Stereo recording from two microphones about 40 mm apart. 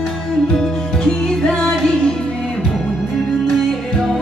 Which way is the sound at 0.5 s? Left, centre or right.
Centre.